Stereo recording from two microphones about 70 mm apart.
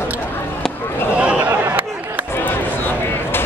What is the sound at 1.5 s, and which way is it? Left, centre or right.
Chatter, right.